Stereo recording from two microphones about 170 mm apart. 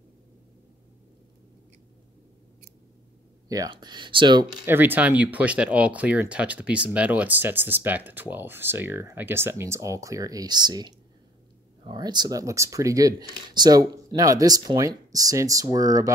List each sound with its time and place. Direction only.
3.4 s speech: 20° right (ahead or behind)
4.6 s speech: 10° right (ahead or behind)